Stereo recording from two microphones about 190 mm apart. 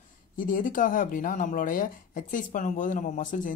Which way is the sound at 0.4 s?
45° left (ahead or behind).